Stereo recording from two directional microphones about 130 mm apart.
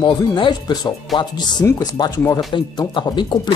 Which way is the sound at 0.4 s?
35° left (ahead or behind).